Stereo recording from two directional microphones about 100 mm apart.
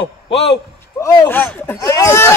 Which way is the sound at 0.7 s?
25° left (ahead or behind).